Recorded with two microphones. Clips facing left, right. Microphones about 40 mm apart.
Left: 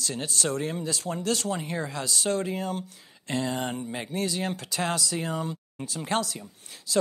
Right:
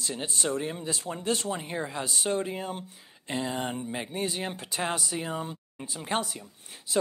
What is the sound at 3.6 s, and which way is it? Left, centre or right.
Speech, centre.